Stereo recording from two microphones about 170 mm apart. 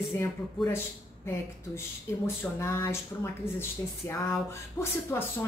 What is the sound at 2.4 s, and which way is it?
Speech, 15° left (ahead or behind).